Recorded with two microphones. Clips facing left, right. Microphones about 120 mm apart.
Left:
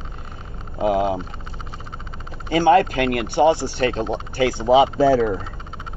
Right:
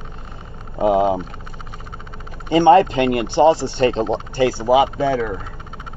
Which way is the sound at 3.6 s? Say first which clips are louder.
Right 3 dB; 25° right (ahead or behind).